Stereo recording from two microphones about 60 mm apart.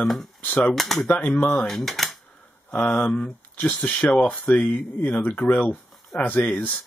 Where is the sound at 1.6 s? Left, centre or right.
Centre.